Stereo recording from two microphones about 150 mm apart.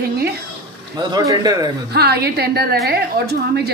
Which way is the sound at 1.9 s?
90° right.